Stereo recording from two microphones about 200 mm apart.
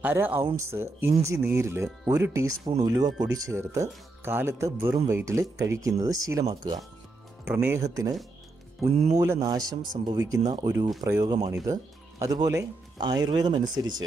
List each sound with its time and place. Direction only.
0.0 s speech: 10° right (ahead or behind)
7.4 s speech: 10° right (ahead or behind)
9.1 s speech: 15° right (ahead or behind)